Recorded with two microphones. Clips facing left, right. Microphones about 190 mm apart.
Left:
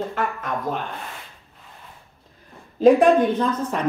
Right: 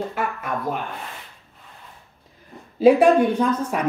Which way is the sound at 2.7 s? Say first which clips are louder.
Even; 10° right (ahead or behind).